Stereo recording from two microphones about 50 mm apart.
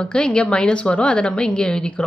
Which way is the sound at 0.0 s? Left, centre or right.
Centre.